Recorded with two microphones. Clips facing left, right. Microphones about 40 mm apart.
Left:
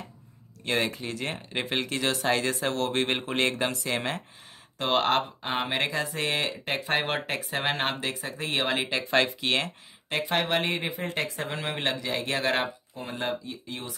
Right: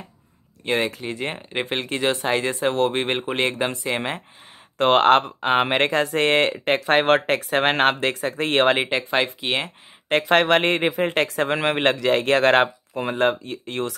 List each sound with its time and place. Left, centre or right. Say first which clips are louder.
0.7 s speech: right 5 dB; right
4.7 s speech: right 9 dB; right
8.7 s speech: right 6 dB; right
9.1 s speech: left 1 dB; right
10.0 s speech: right 9 dB; right